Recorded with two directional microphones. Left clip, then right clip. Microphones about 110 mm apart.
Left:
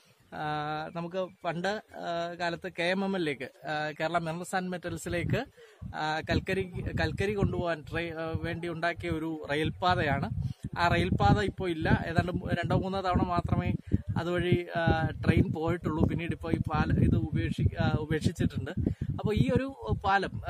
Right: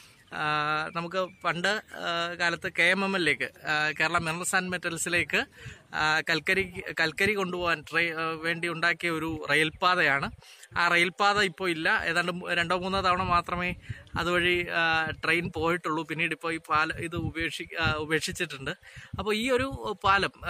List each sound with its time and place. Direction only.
0.4 s speech: 35° left (ahead or behind)
5.9 s speech: 25° left (ahead or behind)